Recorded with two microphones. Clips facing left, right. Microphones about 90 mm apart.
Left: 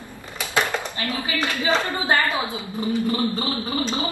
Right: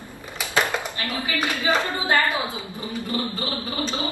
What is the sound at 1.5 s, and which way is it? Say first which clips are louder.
Speech: left 1 dB; 15° right (ahead or behind).